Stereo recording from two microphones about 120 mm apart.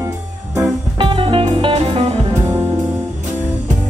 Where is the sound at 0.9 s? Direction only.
45° right (ahead or behind).